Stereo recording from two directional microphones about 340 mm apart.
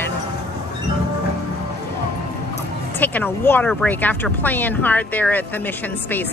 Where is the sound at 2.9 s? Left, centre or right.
Centre.